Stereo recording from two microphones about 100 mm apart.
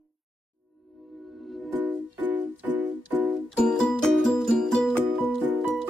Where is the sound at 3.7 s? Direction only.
5° left (ahead or behind).